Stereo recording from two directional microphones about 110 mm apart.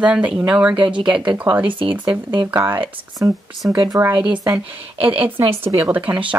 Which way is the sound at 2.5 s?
20° right (ahead or behind).